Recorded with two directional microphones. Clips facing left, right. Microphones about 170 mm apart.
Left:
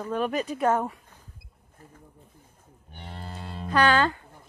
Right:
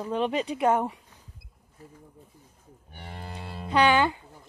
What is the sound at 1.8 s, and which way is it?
Speech, 50° left (ahead or behind).